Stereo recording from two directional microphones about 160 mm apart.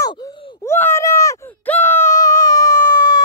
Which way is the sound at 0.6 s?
15° left (ahead or behind).